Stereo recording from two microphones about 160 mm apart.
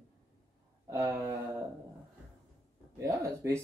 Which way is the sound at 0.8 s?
15° right (ahead or behind).